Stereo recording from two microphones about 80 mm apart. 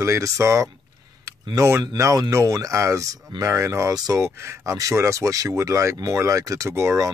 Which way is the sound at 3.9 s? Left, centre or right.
Right.